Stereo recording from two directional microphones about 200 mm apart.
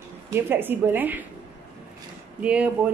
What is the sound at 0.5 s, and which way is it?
Speech, 10° right (ahead or behind).